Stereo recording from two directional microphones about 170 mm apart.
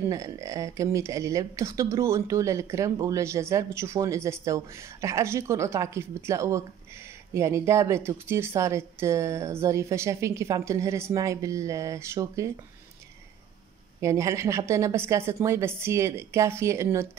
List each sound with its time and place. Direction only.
0.1 s speech: 20° right (ahead or behind)
14.0 s speech: 15° right (ahead or behind)